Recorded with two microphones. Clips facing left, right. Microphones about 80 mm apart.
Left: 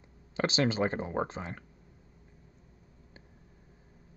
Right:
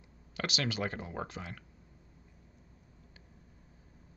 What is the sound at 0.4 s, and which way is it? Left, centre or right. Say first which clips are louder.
Speech: left 7 dB; left.